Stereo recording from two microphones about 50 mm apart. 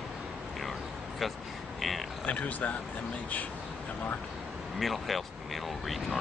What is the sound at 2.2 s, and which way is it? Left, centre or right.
Speech, left.